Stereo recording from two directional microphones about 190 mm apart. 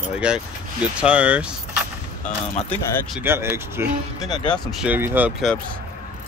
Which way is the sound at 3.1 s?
10° right (ahead or behind).